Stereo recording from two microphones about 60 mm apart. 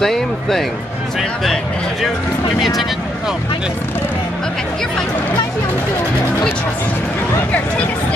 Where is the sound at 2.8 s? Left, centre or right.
Centre.